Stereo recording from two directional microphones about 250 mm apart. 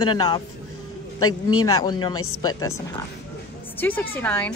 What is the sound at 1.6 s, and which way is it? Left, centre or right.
Speech, centre.